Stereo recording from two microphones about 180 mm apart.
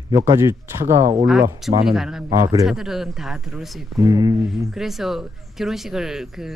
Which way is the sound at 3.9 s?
20° right (ahead or behind).